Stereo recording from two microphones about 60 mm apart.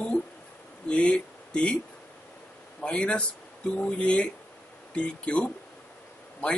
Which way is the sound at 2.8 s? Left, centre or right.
Centre.